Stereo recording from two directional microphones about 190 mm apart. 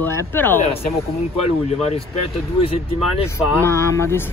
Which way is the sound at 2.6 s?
30° left (ahead or behind).